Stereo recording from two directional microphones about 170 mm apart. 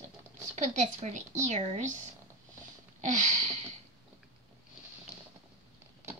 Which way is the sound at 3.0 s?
45° right (ahead or behind).